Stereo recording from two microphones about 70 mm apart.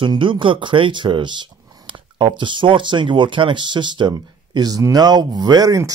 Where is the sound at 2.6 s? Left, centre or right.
Right.